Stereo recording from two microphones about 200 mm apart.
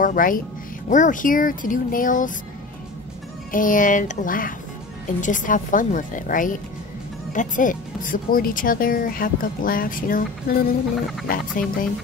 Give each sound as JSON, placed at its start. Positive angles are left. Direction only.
{"t": 0.0, "sound": "speech", "side_deg": 45}
{"t": 3.5, "sound": "speech", "side_deg": 40}